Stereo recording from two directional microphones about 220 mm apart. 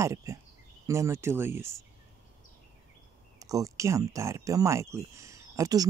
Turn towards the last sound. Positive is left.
turn(degrees=-15)  # may be behind; listen again after turning